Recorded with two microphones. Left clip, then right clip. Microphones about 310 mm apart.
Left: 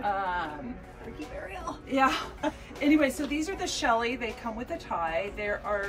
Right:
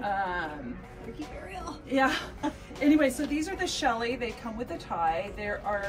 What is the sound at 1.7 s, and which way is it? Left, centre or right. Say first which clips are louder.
A woman's voice: left 1 dB; centre.